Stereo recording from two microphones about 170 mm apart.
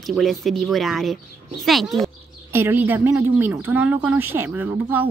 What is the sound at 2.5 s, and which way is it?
A woman's voice, 15° right (ahead or behind).